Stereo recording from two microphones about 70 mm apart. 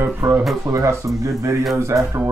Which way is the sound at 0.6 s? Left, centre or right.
Right.